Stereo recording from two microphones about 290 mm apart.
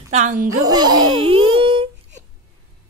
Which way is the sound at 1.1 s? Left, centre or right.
Centre.